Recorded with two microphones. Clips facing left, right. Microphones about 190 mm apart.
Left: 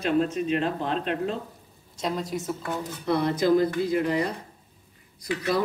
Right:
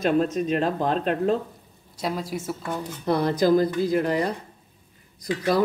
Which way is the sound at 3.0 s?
40° right (ahead or behind).